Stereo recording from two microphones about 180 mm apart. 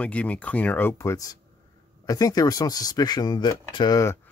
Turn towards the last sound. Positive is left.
turn(degrees=20)  # may be behind; listen again after turning